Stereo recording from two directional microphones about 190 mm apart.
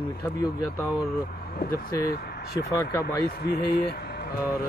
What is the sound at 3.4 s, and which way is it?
Speech, 55° left (ahead or behind).